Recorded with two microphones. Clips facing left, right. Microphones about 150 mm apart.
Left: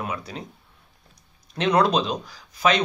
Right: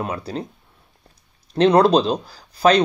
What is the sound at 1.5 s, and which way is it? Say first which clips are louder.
Speech: right 6 dB; 30° right (ahead or behind).